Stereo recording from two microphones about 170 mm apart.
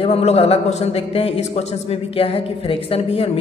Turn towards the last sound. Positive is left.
turn(degrees=35)  # may be behind; listen again after turning